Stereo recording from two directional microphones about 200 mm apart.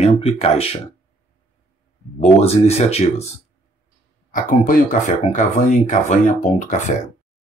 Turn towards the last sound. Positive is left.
turn(degrees=40)  # may be behind; listen again after turning